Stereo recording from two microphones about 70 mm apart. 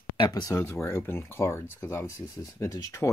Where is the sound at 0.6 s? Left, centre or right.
Left.